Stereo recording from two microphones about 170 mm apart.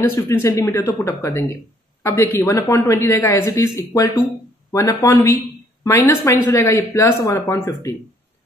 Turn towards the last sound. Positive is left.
turn(degrees=15)  # may be behind; listen again after turning